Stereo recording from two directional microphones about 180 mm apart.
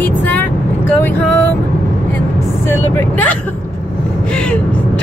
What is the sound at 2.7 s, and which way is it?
Speech, 10° left (ahead or behind).